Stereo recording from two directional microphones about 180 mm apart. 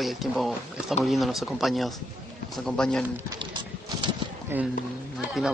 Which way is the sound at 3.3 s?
25° right (ahead or behind).